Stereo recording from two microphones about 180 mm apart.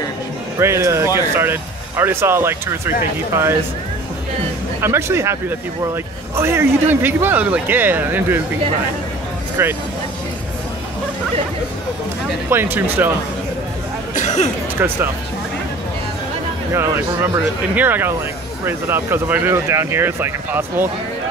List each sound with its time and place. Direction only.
0.6 s speech: 15° right (ahead or behind)
4.8 s speech: 15° right (ahead or behind)
9.6 s speech: 15° right (ahead or behind)
12.4 s speech: 10° right (ahead or behind)
14.1 s cough: 40° left (ahead or behind)
14.8 s speech: 10° right (ahead or behind)
16.7 s speech: 15° right (ahead or behind)